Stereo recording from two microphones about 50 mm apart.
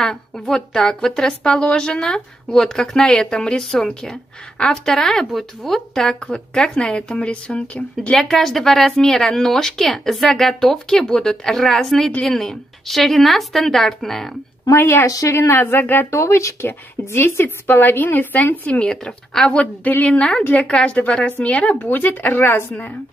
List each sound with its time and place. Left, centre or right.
0.0 s a woman's voice: centre
8.1 s a woman's voice: centre
14.9 s speech: left
15.5 s a woman's voice: left
16.1 s speech: left
17.0 s a woman's voice: left
18.8 s a woman's voice: centre
19.5 s a woman's voice: left
21.8 s speech: left